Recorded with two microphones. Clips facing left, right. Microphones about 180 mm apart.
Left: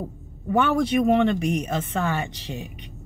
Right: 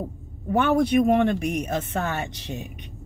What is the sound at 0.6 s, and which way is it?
Speech, 55° right (ahead or behind).